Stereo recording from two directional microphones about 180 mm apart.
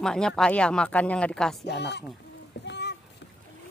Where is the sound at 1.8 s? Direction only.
70° left (ahead or behind).